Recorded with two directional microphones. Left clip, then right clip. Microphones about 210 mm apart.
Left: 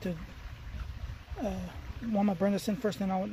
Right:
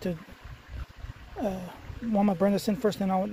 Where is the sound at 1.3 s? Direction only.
35° right (ahead or behind).